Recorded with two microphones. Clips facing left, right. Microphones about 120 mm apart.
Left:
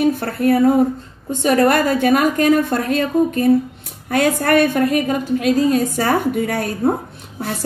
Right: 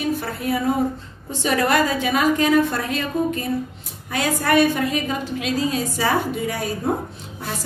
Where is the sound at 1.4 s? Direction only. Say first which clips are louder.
Left 5 dB; 45° left (ahead or behind).